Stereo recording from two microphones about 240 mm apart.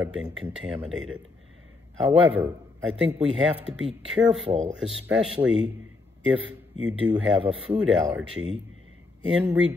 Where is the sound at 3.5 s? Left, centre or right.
Centre.